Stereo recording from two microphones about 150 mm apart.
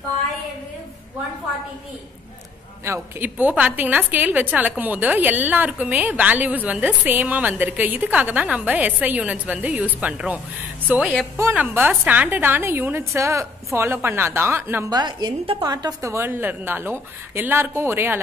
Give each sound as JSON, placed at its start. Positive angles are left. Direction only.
{"t": 2.8, "sound": "a woman's voice", "side_deg": -15}
{"t": 14.9, "sound": "a woman's voice", "side_deg": -30}